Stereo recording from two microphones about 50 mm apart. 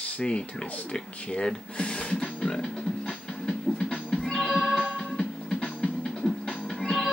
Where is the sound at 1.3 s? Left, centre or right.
Centre.